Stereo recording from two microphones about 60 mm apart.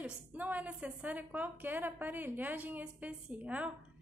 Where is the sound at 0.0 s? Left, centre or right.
Right.